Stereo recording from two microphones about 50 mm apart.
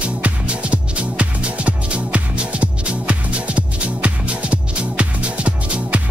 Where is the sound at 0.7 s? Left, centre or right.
Right.